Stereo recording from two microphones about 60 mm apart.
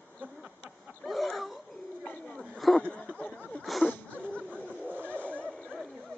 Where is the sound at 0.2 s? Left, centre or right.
Right.